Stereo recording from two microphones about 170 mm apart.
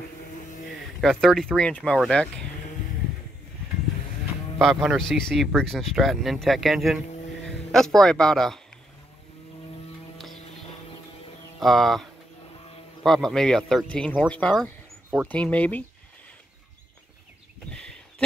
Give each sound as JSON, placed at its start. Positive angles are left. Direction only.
{"t": 0.7, "sound": "speech", "side_deg": 0}
{"t": 4.6, "sound": "speech", "side_deg": 0}
{"t": 10.1, "sound": "music", "side_deg": 0}
{"t": 11.6, "sound": "speech", "side_deg": 0}
{"t": 17.6, "sound": "a sound", "side_deg": 5}